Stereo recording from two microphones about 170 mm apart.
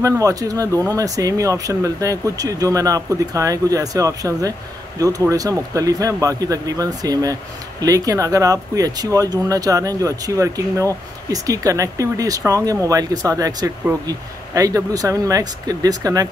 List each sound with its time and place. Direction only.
0.0 s speech: 20° right (ahead or behind)